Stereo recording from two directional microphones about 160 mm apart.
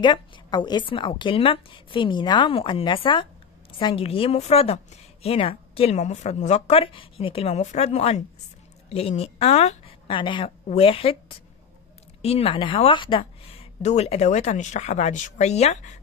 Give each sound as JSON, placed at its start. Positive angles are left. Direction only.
{"t": 0.0, "sound": "a woman's voice", "side_deg": 30}